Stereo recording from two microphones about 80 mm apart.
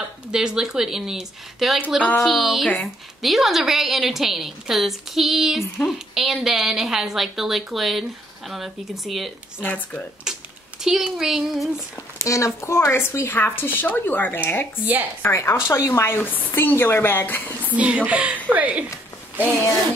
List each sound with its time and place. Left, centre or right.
0.3 s speech: centre
2.0 s speech: centre
2.2 s a woman's voice: centre
9.6 s speech: centre
10.3 s a sound: centre
10.8 s a woman's voice: centre
12.2 s speech: left
16.2 s speech: left
17.6 s a woman's voice: centre